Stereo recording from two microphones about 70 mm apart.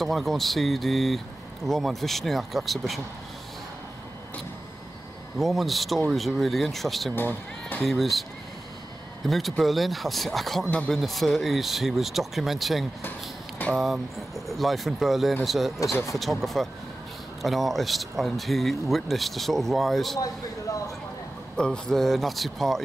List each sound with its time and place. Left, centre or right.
0.0 s speech: centre
5.4 s speech: centre
7.2 s speech: left
7.8 s speech: centre
20.2 s a sound: left
21.5 s speech: centre